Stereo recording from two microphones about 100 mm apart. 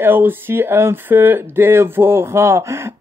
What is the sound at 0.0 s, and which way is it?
Speech, 20° right (ahead or behind).